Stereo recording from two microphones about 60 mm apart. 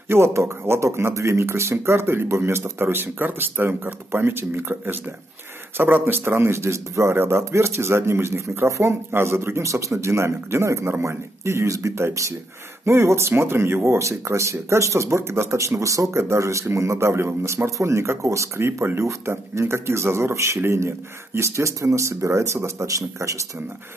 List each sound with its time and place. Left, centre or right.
0.1 s a man's voice: right
16.2 s a man's voice: right
17.6 s a man's voice: right